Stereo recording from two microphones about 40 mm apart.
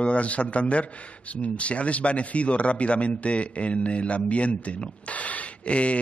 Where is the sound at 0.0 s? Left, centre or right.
Left.